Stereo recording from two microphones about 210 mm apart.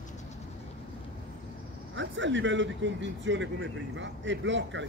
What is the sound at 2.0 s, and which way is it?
A man's voice, 60° right (ahead or behind).